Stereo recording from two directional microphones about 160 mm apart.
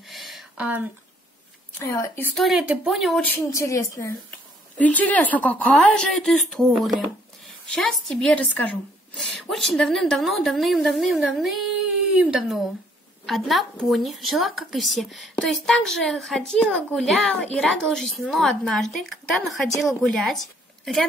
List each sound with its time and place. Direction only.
0.0 s a sound: centre (ahead or behind)
1.8 s speech: 20° left (ahead or behind)
2.3 s speech: centre (ahead or behind); by 4.1 s 20° left (ahead or behind)
4.7 s speech: 10° left (ahead or behind)